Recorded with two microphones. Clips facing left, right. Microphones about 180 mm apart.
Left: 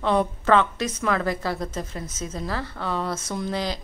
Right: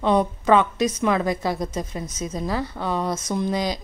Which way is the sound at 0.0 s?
15° right (ahead or behind).